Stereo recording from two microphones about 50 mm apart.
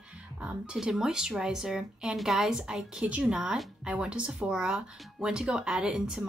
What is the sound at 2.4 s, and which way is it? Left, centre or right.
Speech, centre.